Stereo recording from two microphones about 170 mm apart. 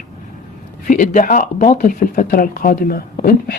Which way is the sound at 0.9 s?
50° left (ahead or behind).